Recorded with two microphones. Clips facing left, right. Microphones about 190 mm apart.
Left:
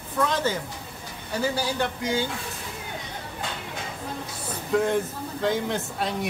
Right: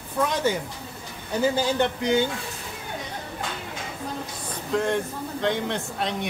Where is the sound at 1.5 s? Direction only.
20° right (ahead or behind).